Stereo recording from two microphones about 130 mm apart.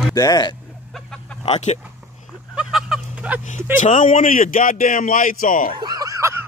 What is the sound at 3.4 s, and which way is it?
A man's voice, 75° left (ahead or behind).